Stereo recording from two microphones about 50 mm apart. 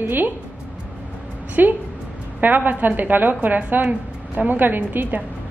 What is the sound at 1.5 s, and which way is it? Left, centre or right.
A woman's voice, right.